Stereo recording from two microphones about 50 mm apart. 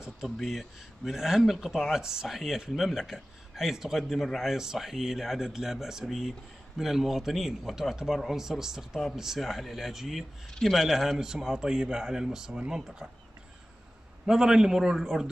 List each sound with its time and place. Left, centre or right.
0.2 s a man's voice: centre
14.2 s a man's voice: centre